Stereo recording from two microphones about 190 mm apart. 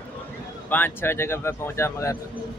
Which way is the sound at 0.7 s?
10° left (ahead or behind).